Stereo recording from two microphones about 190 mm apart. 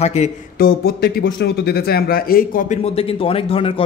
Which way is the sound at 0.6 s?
55° left (ahead or behind).